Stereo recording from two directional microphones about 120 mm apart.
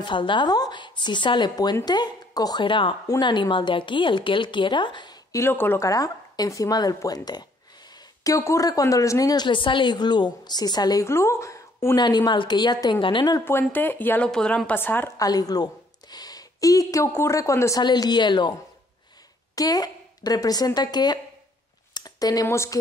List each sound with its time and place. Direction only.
0.0 s speech: 40° left (ahead or behind)
5.3 s a woman's voice: 20° left (ahead or behind)
12.0 s speech: 35° left (ahead or behind)
13.5 s speech: 15° left (ahead or behind)
15.1 s a woman's voice: 30° left (ahead or behind)
17.8 s speech: 35° left (ahead or behind)
19.5 s a woman's voice: 30° left (ahead or behind)